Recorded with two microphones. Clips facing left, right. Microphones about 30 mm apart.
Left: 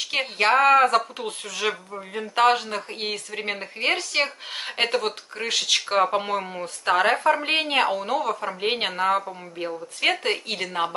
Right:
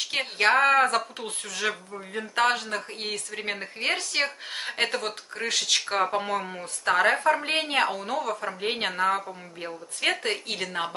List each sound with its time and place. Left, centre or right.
0.0 s speech: centre